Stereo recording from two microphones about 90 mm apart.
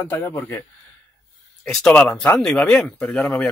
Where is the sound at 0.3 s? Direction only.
25° left (ahead or behind).